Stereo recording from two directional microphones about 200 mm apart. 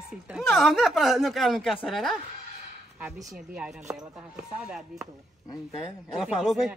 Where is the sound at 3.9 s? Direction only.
5° right (ahead or behind).